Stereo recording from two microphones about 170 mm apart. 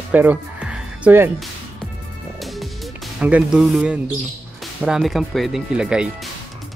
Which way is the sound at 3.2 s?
5° right (ahead or behind).